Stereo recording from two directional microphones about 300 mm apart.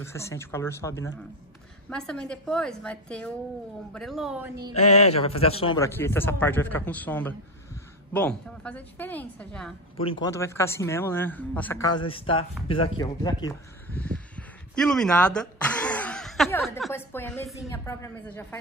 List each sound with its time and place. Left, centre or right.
0.0 s a woman's voice: centre
4.7 s a man's voice: left; by 9.8 s centre
9.9 s speech: centre
12.0 s speech: centre